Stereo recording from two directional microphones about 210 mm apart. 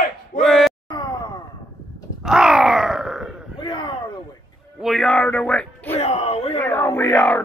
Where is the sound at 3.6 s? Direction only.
20° left (ahead or behind).